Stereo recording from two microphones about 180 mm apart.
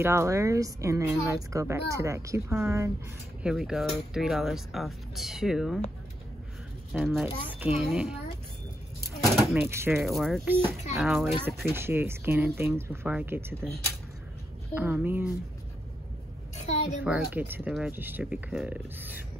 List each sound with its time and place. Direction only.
0.0 s a woman's voice: 15° right (ahead or behind)
3.4 s speech: 5° right (ahead or behind)
6.9 s speech: 5° right (ahead or behind)
9.5 s a woman's voice: 10° right (ahead or behind)
10.0 s speech: centre (ahead or behind)
11.4 s a woman's voice: 10° right (ahead or behind)
14.7 s a woman's voice: 10° right (ahead or behind)
16.6 s a woman's voice: 40° left (ahead or behind)
17.0 s a woman's voice: 10° right (ahead or behind)